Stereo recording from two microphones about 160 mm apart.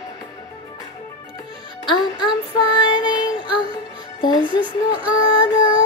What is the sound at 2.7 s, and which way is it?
Child singing, 25° left (ahead or behind).